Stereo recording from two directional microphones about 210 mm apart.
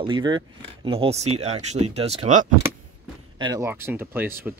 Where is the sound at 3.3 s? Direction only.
20° right (ahead or behind).